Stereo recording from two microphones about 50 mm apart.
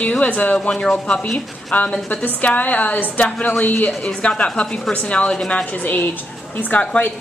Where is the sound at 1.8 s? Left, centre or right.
Left.